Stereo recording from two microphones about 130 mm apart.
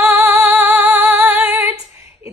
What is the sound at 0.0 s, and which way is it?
Female singing, 15° right (ahead or behind).